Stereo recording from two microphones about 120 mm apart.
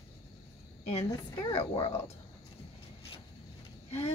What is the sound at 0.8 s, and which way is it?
A woman's voice, 55° left (ahead or behind).